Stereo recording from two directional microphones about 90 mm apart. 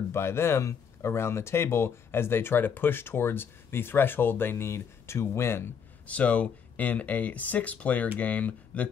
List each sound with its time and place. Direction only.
0.1 s speech: 30° left (ahead or behind)
6.0 s speech: 15° left (ahead or behind)